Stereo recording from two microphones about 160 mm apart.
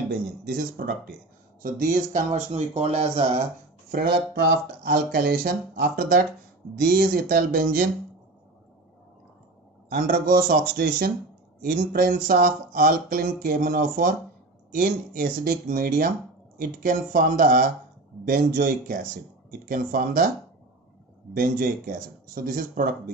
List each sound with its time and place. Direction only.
0.1 s speech: 65° right (ahead or behind); by 3.4 s 40° right (ahead or behind)
3.9 s speech: 75° right (ahead or behind)
9.8 s speech: 60° right (ahead or behind)
21.3 s speech: 65° right (ahead or behind)